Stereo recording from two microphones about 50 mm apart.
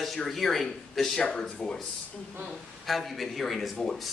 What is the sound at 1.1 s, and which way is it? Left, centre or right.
Speech, centre.